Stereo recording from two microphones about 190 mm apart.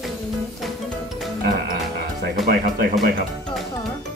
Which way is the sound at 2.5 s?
50° right (ahead or behind).